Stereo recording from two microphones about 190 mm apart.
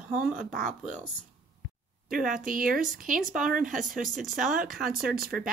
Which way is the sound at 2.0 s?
45° right (ahead or behind).